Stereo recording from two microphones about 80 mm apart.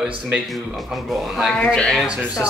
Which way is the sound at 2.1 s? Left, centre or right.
Centre.